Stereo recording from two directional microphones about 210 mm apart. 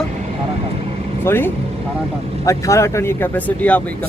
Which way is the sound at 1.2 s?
10° left (ahead or behind).